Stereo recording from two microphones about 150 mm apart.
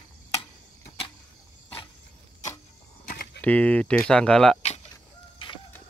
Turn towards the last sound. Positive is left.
turn(degrees=30)  # may be behind; listen again after turning